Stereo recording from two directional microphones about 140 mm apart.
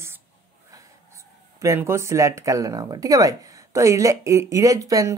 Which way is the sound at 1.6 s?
20° right (ahead or behind).